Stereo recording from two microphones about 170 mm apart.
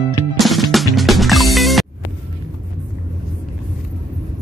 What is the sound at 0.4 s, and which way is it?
Music, centre (ahead or behind).